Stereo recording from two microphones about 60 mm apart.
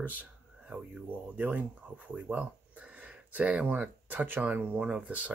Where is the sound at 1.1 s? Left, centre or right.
Right.